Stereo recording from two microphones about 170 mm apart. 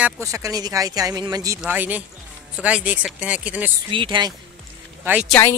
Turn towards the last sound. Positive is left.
turn(degrees=10)  # may be behind; listen again after turning